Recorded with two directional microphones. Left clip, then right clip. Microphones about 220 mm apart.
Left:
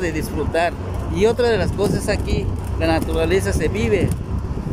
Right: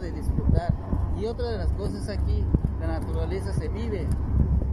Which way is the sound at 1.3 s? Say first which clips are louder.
Left 14 dB; 70° left (ahead or behind).